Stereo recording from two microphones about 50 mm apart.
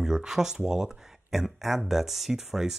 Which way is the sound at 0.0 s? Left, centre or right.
Centre.